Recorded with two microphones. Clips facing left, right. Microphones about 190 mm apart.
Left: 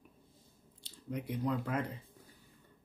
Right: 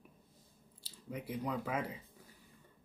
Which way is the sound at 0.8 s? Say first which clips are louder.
Left 3 dB; 5° right (ahead or behind).